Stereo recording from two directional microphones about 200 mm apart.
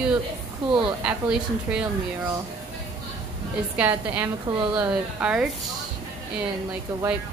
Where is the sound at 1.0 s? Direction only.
5° right (ahead or behind).